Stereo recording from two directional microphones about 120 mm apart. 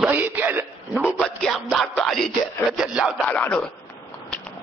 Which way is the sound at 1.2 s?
5° left (ahead or behind).